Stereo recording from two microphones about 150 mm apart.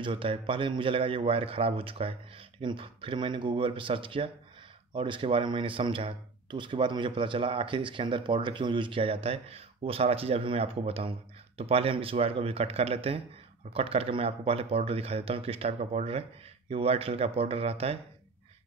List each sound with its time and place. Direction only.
0.0 s speech: 35° right (ahead or behind)